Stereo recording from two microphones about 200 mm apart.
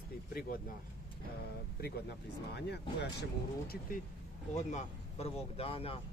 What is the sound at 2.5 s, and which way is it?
Speech, 55° left (ahead or behind).